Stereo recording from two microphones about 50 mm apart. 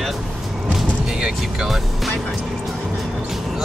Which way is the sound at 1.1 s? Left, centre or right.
Centre.